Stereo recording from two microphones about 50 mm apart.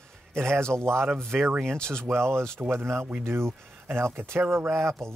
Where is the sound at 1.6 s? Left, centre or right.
Centre.